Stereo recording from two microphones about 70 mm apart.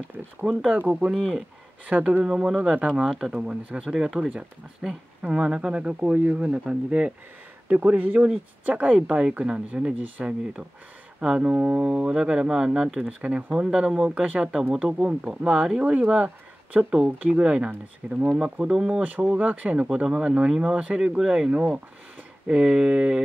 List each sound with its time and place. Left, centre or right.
0.5 s speech: centre
0.7 s speech: right
1.1 s speech: centre
1.9 s speech: centre
3.9 s speech: centre
19.0 s speech: right
21.5 s speech: right
22.5 s speech: centre